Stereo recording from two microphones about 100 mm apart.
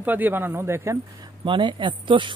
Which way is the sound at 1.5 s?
55° right (ahead or behind).